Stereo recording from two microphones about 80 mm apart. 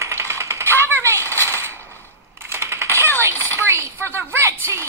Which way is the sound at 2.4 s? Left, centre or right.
Right.